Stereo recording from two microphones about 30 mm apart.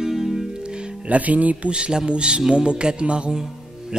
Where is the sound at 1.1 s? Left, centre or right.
Right.